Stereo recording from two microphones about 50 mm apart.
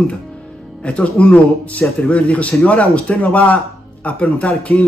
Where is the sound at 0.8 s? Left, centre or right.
Left.